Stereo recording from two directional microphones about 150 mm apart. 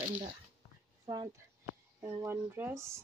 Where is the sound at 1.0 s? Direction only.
25° right (ahead or behind).